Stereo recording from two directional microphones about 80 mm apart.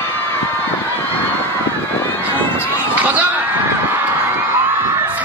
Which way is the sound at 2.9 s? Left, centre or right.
Centre.